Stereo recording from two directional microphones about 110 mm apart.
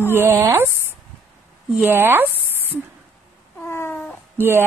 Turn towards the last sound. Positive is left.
turn(degrees=-20)  # may be behind; listen again after turning